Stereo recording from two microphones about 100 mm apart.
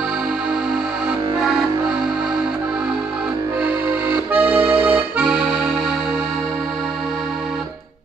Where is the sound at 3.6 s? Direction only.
15° right (ahead or behind).